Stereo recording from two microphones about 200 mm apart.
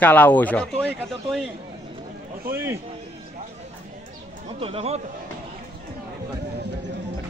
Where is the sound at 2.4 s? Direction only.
10° right (ahead or behind).